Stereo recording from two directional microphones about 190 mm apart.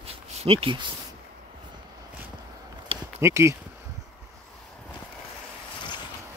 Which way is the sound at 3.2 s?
15° right (ahead or behind).